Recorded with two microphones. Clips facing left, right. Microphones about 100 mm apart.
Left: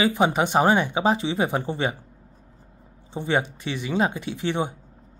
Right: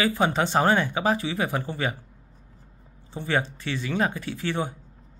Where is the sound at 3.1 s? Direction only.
20° left (ahead or behind).